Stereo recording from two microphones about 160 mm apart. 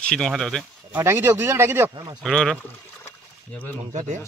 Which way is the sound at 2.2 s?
5° left (ahead or behind).